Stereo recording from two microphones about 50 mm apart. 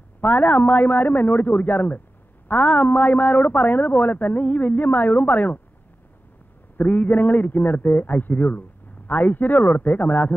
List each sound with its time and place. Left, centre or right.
0.2 s a man's voice: left
6.8 s a man's voice: left